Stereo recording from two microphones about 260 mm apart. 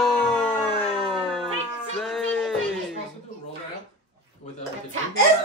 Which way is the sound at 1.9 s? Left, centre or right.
Centre.